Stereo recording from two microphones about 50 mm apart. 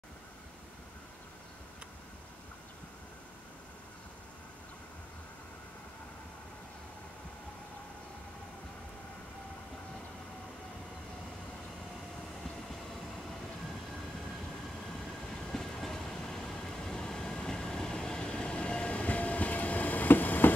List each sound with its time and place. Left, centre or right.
15.5 s train: centre; by 20.5 s left